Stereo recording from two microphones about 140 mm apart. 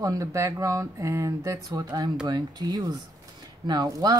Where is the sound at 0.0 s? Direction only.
25° right (ahead or behind).